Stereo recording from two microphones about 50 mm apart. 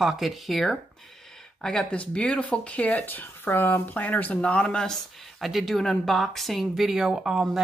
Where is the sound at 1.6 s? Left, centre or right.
Centre.